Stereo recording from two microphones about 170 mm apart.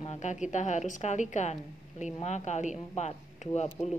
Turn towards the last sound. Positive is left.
turn(degrees=40)  # may be behind; listen again after turning